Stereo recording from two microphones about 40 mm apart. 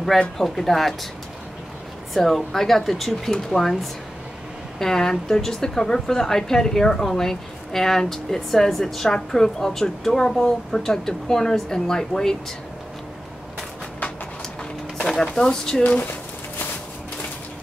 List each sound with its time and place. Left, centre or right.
0.4 s speech: centre
2.2 s a woman's voice: centre
15.1 s a woman's voice: centre